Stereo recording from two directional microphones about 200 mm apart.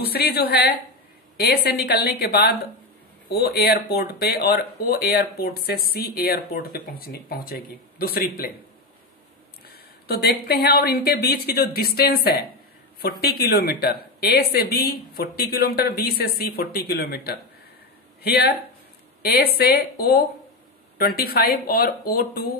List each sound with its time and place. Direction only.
0.0 s speech: 50° left (ahead or behind)
9.7 s speech: 50° left (ahead or behind)